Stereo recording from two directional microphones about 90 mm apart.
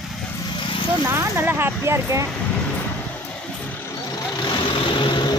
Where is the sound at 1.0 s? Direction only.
25° right (ahead or behind).